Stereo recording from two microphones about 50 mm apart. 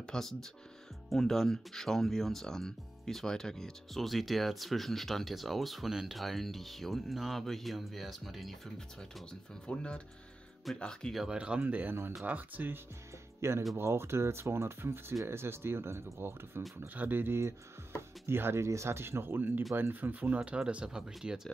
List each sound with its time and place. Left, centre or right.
0.0 s speech: centre
9.3 s speech: centre
11.2 s speech: centre
12.3 s speech: right
13.4 s speech: right
16.8 s speech: right
18.2 s speech: right
20.3 s speech: centre